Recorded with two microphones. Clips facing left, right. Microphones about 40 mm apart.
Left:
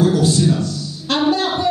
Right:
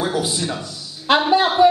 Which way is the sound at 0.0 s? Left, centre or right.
Centre.